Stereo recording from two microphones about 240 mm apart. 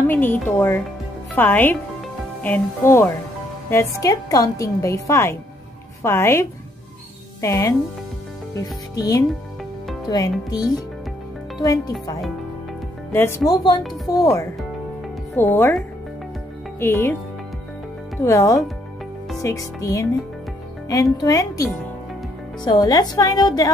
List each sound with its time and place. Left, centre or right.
0.0 s a woman's voice: centre
7.4 s a woman's voice: centre
13.1 s a woman's voice: centre
16.8 s a woman's voice: centre
18.2 s a woman's voice: centre
22.7 s a woman's voice: centre